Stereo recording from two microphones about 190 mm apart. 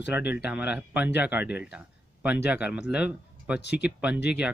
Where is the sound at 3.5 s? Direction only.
60° left (ahead or behind).